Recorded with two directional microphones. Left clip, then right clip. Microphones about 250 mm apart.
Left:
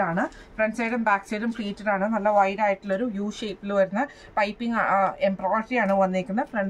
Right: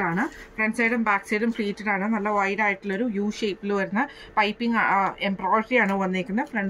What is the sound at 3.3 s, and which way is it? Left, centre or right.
A woman's voice, centre.